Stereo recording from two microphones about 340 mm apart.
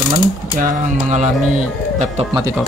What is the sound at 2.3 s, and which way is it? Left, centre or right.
Speech, centre.